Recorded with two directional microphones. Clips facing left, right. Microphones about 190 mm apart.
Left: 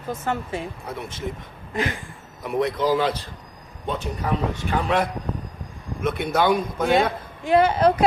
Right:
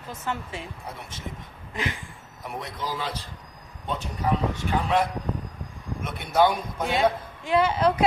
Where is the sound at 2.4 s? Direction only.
75° left (ahead or behind).